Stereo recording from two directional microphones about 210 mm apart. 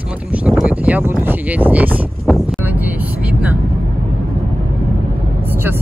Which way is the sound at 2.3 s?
5° left (ahead or behind).